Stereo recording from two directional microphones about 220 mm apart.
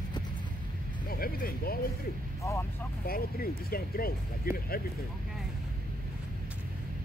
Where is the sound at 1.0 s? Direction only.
40° left (ahead or behind).